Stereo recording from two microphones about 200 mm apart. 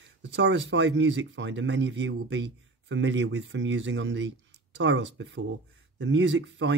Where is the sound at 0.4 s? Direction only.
65° right (ahead or behind).